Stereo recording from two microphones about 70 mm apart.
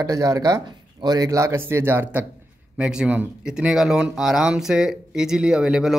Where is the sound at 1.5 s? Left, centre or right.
Right.